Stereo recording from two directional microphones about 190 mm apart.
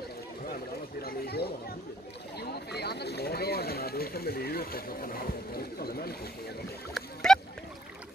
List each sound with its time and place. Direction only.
1.0 s speech: 55° left (ahead or behind)
2.3 s a sound: 60° left (ahead or behind)
6.9 s rowboat: centre (ahead or behind)